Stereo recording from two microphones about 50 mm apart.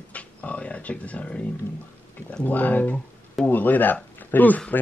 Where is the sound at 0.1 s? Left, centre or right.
Left.